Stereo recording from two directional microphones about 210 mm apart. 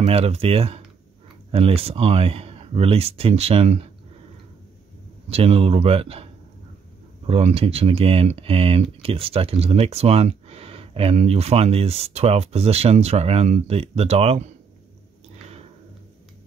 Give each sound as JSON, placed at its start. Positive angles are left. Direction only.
{"t": 0.0, "sound": "speech", "side_deg": -30}
{"t": 5.3, "sound": "speech", "side_deg": -30}
{"t": 7.2, "sound": "speech", "side_deg": -30}